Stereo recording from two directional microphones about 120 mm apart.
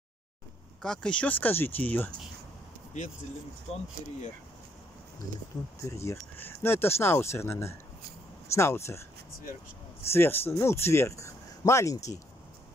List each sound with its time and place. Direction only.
0.8 s speech: 5° left (ahead or behind)
2.9 s speech: 85° left
3.7 s speech: 65° left (ahead or behind)
5.9 s speech: 25° left (ahead or behind)
10.1 s speech: 20° left (ahead or behind)